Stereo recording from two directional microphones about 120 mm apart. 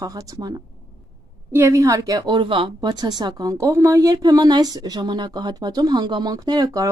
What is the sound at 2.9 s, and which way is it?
Speech, 35° right (ahead or behind).